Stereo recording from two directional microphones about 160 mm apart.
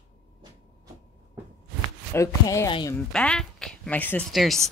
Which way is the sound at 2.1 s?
20° left (ahead or behind).